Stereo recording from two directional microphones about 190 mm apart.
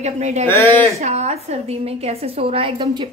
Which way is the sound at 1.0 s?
35° right (ahead or behind).